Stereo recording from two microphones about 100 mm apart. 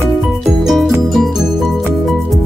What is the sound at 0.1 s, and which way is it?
Music, centre (ahead or behind).